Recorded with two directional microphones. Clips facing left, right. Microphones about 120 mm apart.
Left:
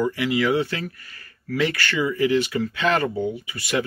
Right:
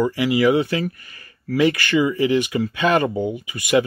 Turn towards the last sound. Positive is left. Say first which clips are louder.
# right 6 dB
turn(degrees=-15)  # may be behind; listen again after turning